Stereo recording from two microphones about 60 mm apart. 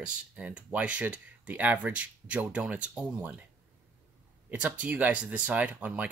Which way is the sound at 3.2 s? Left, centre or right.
Right.